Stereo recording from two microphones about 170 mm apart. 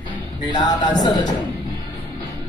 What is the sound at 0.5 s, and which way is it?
Speech, 25° left (ahead or behind).